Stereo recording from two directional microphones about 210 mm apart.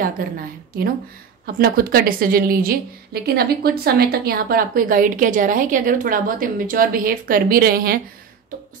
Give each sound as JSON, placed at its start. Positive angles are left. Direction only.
{"t": 1.4, "sound": "a woman's voice", "side_deg": -45}